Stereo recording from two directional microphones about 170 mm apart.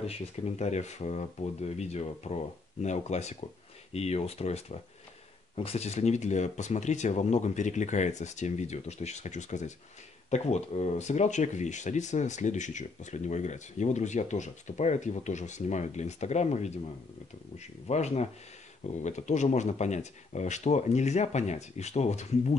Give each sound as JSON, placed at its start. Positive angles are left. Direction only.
{"t": 0.0, "sound": "speech", "side_deg": 40}
{"t": 17.8, "sound": "speech", "side_deg": 40}